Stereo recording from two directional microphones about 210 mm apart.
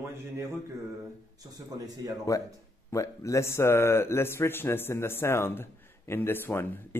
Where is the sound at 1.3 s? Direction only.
20° right (ahead or behind).